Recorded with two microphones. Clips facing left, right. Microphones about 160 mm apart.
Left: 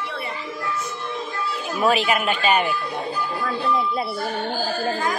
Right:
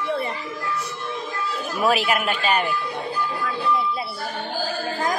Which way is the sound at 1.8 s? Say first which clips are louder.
Left 1 dB; 5° right (ahead or behind).